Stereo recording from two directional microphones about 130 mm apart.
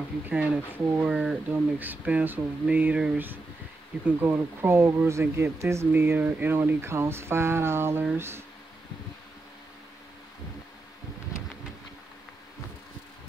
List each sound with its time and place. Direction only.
0.3 s speech: 10° right (ahead or behind)